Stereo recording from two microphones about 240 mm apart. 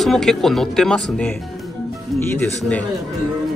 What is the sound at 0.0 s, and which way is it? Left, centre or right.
Speech, centre.